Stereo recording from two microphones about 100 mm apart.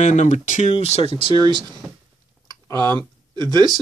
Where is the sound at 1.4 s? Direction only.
45° right (ahead or behind).